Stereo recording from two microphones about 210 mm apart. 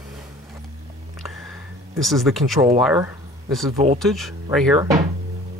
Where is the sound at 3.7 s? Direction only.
30° right (ahead or behind).